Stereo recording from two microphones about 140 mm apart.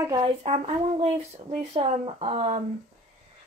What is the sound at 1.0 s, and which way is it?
Speech, 50° right (ahead or behind).